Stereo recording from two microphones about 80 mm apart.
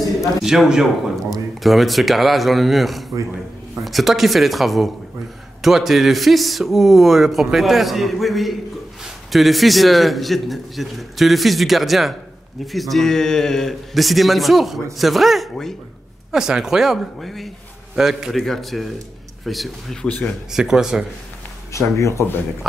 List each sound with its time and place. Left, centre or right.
0.4 s a man's voice: centre
20.1 s speech: centre
20.5 s speech: centre
21.7 s speech: left